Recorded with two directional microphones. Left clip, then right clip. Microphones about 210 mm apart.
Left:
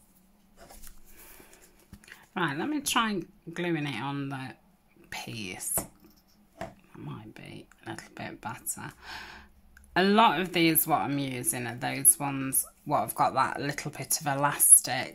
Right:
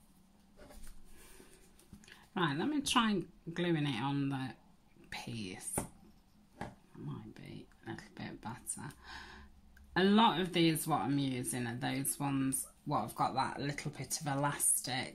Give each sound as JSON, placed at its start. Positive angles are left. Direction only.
{"t": 2.0, "sound": "speech", "side_deg": 10}
{"t": 7.1, "sound": "speech", "side_deg": 20}